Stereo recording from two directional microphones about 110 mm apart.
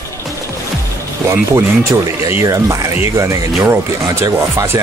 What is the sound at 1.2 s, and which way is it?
Speech, 30° right (ahead or behind).